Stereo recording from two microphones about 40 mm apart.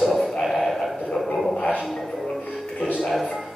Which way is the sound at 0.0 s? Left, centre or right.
Centre.